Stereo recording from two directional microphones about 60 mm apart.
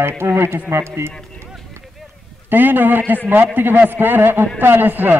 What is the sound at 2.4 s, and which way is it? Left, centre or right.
A man's voice, right.